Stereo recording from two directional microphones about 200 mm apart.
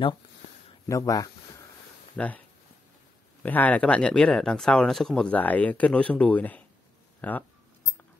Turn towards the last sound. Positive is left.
turn(degrees=10)  # may be behind; listen again after turning